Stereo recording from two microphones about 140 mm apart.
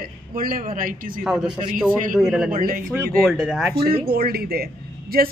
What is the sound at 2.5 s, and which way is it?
Speech, 90° right.